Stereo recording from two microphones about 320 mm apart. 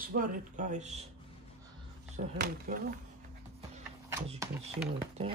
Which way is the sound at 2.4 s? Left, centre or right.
Right.